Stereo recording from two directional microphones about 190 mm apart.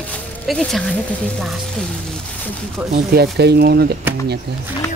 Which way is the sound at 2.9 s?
55° right (ahead or behind).